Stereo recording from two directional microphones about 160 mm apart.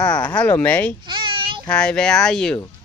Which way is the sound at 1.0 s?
30° right (ahead or behind).